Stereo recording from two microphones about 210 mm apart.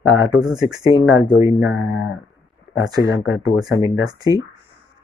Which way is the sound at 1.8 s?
70° left (ahead or behind).